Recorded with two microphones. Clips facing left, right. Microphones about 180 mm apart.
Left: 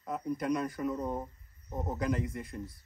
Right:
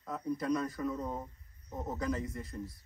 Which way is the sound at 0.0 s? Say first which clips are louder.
Left 2 dB; 20° left (ahead or behind).